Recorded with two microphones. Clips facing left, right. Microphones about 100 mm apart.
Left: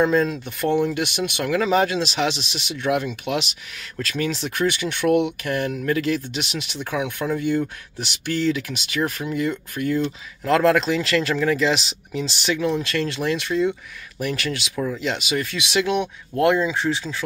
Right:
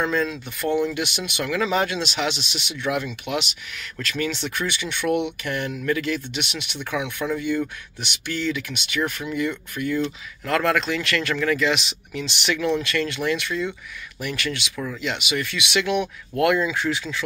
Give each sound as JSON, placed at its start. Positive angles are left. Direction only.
{"t": 0.0, "sound": "speech", "side_deg": 40}